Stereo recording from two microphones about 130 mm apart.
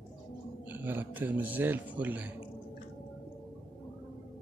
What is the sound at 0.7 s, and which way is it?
A man's voice, 15° right (ahead or behind).